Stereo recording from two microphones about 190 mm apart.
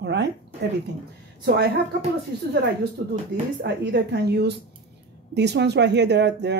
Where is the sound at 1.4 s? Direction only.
60° right (ahead or behind).